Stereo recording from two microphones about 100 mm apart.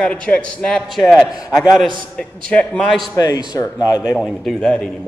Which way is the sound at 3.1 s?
40° left (ahead or behind).